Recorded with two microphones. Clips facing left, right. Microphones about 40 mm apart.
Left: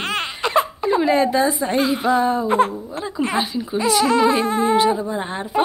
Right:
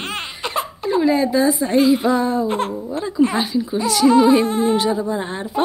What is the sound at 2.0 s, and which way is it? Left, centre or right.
A woman's voice, left.